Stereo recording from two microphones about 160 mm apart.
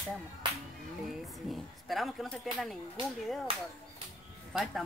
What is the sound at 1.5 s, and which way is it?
Speech, centre (ahead or behind).